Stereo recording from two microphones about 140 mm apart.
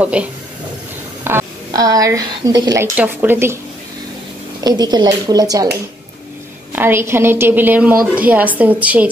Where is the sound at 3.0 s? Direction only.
15° right (ahead or behind).